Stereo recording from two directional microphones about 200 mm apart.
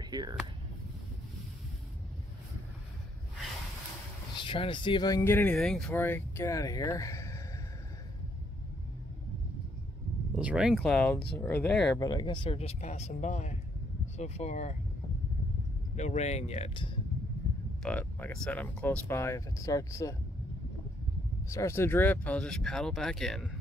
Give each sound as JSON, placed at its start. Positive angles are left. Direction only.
{"t": 0.0, "sound": "speech", "side_deg": -20}
{"t": 4.4, "sound": "speech", "side_deg": 25}
{"t": 10.3, "sound": "speech", "side_deg": -5}
{"t": 12.0, "sound": "speech", "side_deg": 20}
{"t": 16.0, "sound": "speech", "side_deg": 35}
{"t": 17.8, "sound": "speech", "side_deg": 5}
{"t": 21.5, "sound": "speech", "side_deg": 15}